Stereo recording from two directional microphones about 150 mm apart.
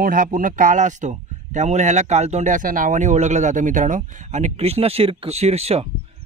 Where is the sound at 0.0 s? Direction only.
65° right (ahead or behind).